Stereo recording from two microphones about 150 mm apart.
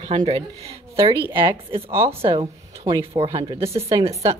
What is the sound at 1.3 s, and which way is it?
Speech, 35° right (ahead or behind).